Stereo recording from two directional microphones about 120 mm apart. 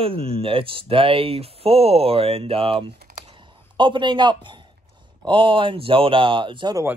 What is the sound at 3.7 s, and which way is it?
A man's voice, 40° right (ahead or behind).